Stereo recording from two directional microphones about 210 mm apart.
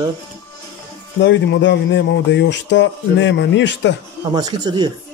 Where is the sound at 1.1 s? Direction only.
55° left (ahead or behind).